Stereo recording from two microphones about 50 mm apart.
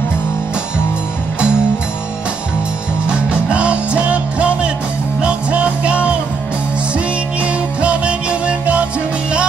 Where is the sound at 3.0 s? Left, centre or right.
Right.